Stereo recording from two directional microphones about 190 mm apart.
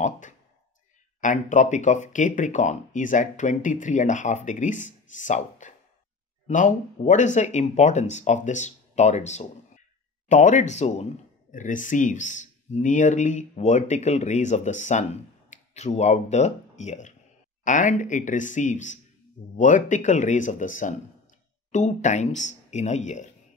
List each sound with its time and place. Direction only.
1.2 s speech: 40° left (ahead or behind)